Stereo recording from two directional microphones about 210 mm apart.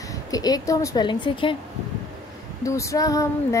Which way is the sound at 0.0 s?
15° left (ahead or behind).